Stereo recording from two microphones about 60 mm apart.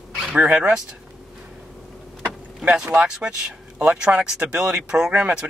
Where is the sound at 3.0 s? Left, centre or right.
Centre.